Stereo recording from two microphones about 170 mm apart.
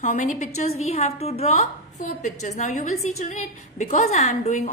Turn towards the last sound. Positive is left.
turn(degrees=45)  # may be behind; listen again after turning